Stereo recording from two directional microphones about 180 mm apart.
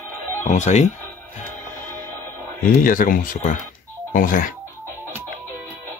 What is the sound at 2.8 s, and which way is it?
Speech, 50° left (ahead or behind).